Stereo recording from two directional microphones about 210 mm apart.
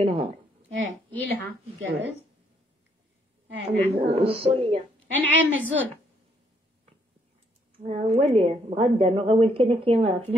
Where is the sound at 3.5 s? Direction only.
55° right (ahead or behind).